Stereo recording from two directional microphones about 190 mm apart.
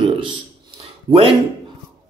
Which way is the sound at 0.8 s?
30° right (ahead or behind).